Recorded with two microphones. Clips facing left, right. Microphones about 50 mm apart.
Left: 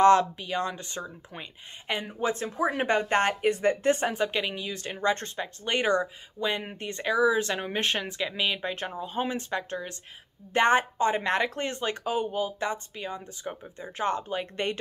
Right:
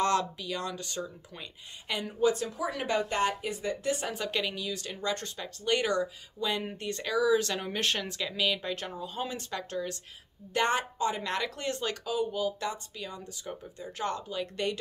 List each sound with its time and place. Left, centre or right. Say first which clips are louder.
0.0 s speech: left 8 dB; left
4.1 s speech: left 4 dB; left